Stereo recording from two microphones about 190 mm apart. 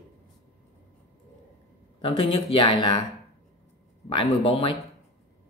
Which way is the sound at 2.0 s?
30° left (ahead or behind).